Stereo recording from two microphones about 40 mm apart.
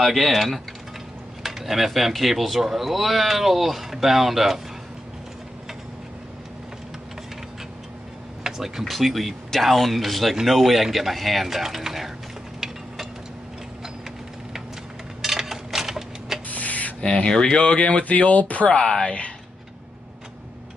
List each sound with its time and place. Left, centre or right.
0.0 s speech: centre
8.5 s speech: centre
8.8 s speech: centre
12.5 s ratchet: centre
15.2 s a sound: centre
16.4 s a sound: left
17.0 s speech: left
17.7 s speech: left
18.8 s speech: left